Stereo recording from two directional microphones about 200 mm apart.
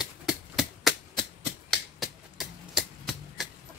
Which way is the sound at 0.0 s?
Centre (ahead or behind).